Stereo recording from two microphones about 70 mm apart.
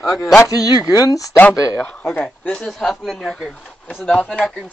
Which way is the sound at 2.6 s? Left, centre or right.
Centre.